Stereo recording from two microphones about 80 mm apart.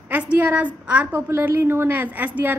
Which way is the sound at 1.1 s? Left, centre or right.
Right.